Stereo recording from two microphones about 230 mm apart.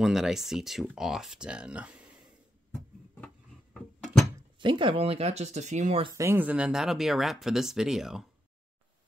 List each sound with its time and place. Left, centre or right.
0.0 s speech: centre
3.7 s a sound: centre
4.6 s speech: right
6.1 s speech: centre